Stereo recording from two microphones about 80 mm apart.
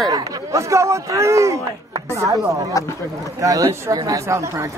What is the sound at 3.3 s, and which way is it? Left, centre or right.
Speech, right.